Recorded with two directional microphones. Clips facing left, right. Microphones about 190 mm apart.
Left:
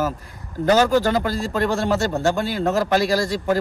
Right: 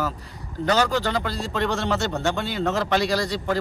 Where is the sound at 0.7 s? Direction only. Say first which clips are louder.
Left 5 dB; 10° left (ahead or behind).